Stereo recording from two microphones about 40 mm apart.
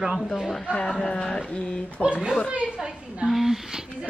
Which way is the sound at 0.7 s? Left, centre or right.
Left.